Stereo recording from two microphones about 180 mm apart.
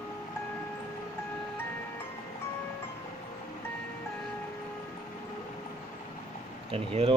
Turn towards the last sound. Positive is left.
turn(degrees=-35)  # may be behind; listen again after turning